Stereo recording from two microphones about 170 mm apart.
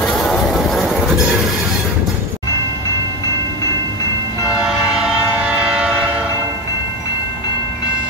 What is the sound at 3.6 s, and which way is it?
Train, 20° left (ahead or behind).